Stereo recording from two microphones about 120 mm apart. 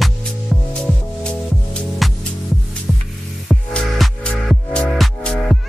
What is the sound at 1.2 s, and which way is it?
Music, 5° left (ahead or behind).